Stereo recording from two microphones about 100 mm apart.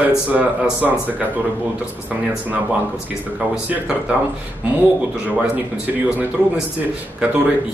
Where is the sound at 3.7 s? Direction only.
10° right (ahead or behind).